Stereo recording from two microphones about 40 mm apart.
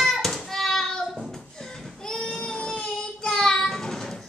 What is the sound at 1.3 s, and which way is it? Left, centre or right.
Child singing, centre.